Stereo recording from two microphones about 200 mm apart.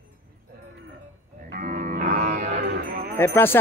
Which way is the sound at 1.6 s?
45° right (ahead or behind).